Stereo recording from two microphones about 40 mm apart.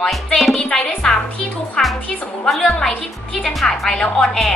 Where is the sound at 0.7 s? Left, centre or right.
Centre.